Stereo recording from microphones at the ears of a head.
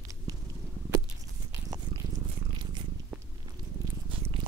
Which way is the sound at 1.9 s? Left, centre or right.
Right.